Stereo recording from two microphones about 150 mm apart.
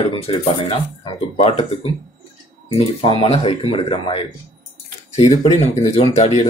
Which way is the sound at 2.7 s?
40° left (ahead or behind).